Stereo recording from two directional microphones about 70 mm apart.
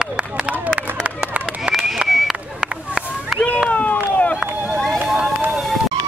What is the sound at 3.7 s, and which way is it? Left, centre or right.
Run, left.